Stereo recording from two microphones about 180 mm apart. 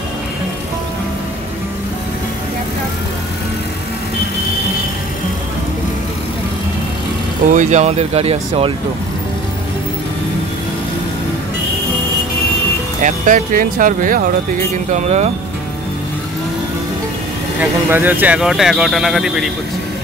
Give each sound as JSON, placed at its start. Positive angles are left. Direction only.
{"t": 7.5, "sound": "speech", "side_deg": -40}
{"t": 13.0, "sound": "speech", "side_deg": -45}
{"t": 14.9, "sound": "speech", "side_deg": -40}
{"t": 17.6, "sound": "speech", "side_deg": -10}